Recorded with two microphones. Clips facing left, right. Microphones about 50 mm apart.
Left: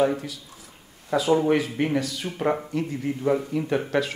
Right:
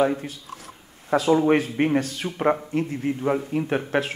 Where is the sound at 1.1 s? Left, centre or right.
Right.